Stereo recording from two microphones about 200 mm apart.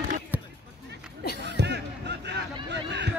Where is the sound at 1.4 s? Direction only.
55° right (ahead or behind).